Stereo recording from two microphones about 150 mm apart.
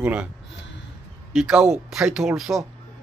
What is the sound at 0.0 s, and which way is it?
Speech, 10° right (ahead or behind).